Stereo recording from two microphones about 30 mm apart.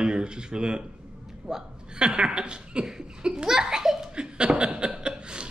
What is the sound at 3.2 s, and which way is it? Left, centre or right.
Belly laugh, right.